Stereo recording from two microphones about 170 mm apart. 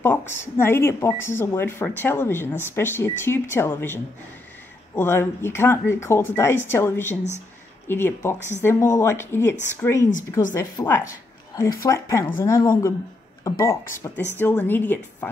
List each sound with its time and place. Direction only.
0.0 s speech: 15° left (ahead or behind)